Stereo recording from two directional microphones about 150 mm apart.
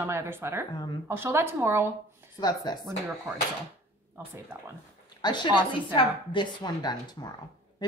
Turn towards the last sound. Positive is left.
turn(degrees=30)  # may be behind; listen again after turning